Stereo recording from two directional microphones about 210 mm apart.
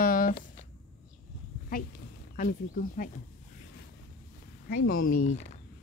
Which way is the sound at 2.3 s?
40° left (ahead or behind).